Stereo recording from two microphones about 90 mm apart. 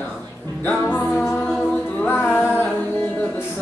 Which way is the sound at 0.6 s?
15° left (ahead or behind).